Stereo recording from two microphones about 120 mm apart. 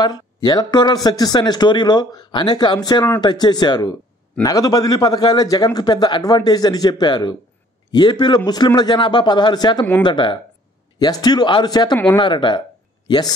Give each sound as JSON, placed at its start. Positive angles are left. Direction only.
{"t": 0.0, "sound": "speech", "side_deg": 35}